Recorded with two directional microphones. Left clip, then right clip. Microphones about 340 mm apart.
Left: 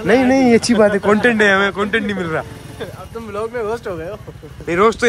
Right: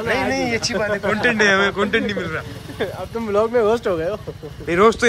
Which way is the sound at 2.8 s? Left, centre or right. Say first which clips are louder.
Right 5 dB; right.